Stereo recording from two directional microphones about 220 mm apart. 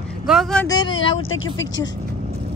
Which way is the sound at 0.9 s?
65° left (ahead or behind).